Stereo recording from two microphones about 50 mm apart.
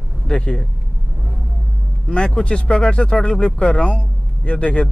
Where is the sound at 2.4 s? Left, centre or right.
Left.